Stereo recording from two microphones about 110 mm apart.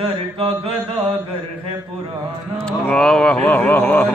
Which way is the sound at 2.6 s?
5° left (ahead or behind).